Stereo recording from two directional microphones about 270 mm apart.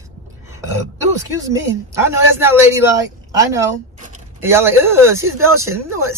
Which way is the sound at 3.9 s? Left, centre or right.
Right.